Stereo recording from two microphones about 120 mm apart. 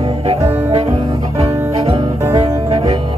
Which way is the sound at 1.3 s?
55° right (ahead or behind).